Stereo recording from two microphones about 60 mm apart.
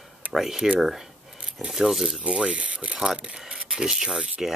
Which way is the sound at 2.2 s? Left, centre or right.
Centre.